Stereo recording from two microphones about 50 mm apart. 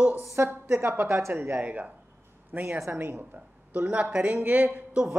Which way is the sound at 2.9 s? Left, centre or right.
Right.